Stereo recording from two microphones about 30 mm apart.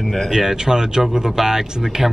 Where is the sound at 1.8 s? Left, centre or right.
Centre.